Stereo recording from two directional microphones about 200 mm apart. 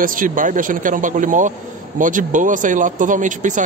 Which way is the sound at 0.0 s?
45° right (ahead or behind).